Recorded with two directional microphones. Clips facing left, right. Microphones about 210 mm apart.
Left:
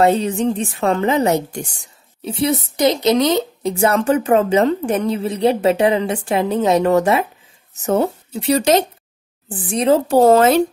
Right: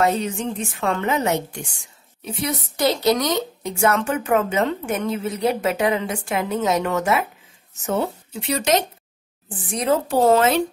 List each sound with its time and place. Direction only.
0.0 s speech: 30° left (ahead or behind)